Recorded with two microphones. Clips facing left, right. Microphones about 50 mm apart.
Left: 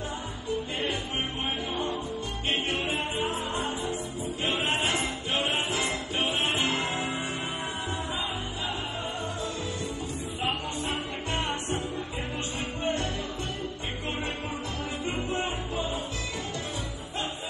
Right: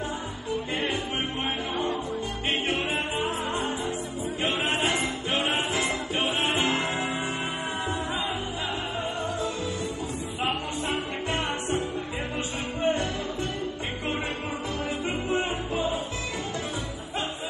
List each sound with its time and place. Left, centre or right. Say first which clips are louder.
2.5 s music: right 1 dB; right
10.4 s music: right 2 dB; right
12.8 s music: right 4 dB; right
15.7 s music: right 4 dB; right